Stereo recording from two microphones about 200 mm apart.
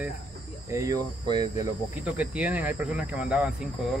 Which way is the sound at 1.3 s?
20° right (ahead or behind).